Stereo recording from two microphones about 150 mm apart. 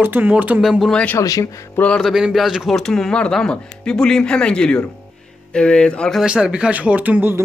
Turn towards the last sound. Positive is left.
turn(degrees=-10)  # may be behind; listen again after turning